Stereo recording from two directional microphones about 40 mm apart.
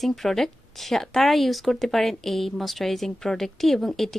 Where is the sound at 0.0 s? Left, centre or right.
Centre.